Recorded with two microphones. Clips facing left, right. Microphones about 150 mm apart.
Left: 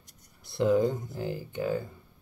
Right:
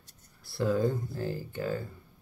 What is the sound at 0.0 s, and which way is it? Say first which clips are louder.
Speech: left 1 dB; 20° left (ahead or behind).